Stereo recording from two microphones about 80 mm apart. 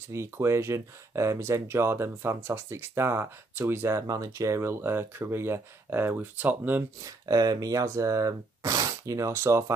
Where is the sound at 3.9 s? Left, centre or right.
Right.